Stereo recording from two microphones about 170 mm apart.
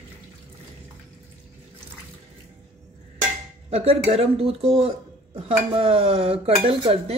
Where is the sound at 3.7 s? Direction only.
35° right (ahead or behind).